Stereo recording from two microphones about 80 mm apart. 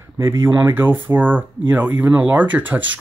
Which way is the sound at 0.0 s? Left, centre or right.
Right.